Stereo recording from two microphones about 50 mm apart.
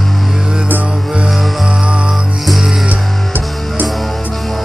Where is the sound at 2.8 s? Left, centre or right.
Right.